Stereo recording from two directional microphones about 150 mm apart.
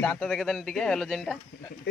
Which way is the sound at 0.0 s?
5° left (ahead or behind).